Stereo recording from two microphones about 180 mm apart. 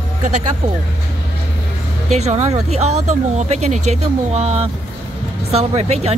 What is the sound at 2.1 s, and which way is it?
Speech, 40° right (ahead or behind).